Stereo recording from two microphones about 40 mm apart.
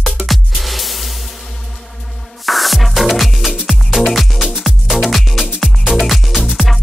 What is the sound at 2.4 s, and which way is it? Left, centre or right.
Music, centre.